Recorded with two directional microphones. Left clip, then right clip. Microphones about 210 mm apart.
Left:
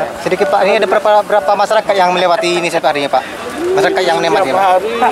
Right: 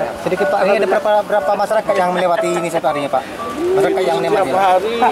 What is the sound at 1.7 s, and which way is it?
Speech, 10° right (ahead or behind).